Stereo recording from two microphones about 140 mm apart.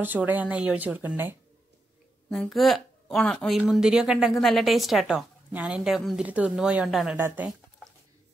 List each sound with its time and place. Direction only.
0.0 s speech: 10° right (ahead or behind)
2.2 s speech: 5° left (ahead or behind)
7.2 s speech: 15° right (ahead or behind)